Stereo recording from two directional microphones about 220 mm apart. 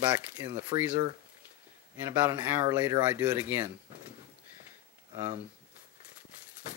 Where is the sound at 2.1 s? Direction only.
15° right (ahead or behind).